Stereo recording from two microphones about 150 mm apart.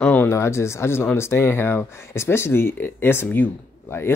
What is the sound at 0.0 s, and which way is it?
Speech, 10° left (ahead or behind).